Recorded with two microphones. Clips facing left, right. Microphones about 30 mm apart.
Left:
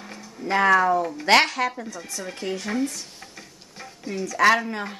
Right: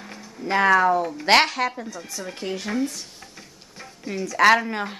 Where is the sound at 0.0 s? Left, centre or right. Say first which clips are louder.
Even; centre.